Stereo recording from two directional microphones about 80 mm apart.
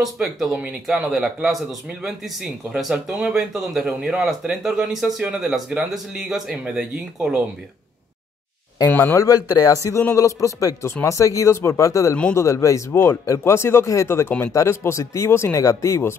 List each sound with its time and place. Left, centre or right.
0.0 s speech: centre
9.1 s a man's voice: left